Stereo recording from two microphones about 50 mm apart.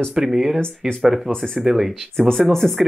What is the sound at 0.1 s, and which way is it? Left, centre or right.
Speech, centre.